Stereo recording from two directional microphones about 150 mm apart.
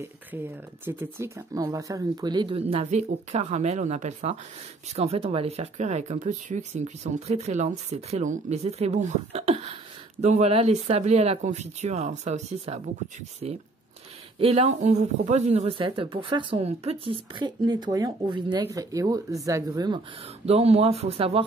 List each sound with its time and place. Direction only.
0.8 s speech: 15° right (ahead or behind); by 12.8 s 45° right (ahead or behind)
14.4 s speech: 40° right (ahead or behind); by 20.0 s 25° right (ahead or behind)
20.4 s speech: 45° right (ahead or behind)